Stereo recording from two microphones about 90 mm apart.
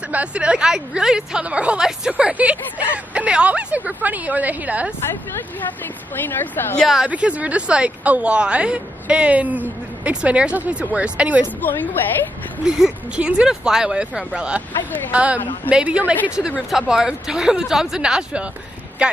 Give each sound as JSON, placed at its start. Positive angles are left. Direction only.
{"t": 0.1, "sound": "speech", "side_deg": -15}
{"t": 6.1, "sound": "a woman's voice", "side_deg": 20}
{"t": 7.1, "sound": "speech", "side_deg": -15}
{"t": 11.6, "sound": "a woman's voice", "side_deg": 20}
{"t": 12.6, "sound": "speech", "side_deg": -10}